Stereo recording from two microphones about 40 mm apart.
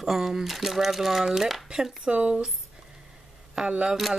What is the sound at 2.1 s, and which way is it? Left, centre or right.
Speech, right.